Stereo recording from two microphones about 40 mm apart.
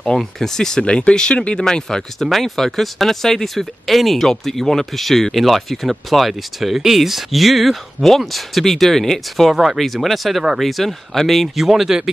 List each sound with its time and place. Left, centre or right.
0.2 s speech: centre
0.8 s speech: left
2.1 s speech: centre
9.5 s speech: centre
11.5 s speech: centre